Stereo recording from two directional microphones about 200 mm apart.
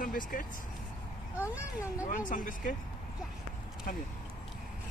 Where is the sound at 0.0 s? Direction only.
45° left (ahead or behind).